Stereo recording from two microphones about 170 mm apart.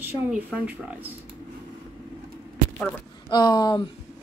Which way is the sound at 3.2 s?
25° left (ahead or behind).